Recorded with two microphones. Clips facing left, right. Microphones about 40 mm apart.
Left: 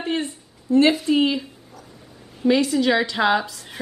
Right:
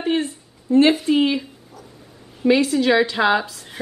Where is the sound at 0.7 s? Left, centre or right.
Right.